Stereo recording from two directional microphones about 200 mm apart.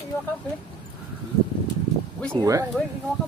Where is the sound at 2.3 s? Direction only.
15° right (ahead or behind).